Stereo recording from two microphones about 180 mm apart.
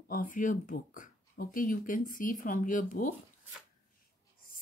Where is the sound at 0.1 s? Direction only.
50° left (ahead or behind).